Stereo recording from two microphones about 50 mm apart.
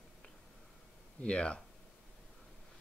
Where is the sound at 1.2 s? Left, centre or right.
Left.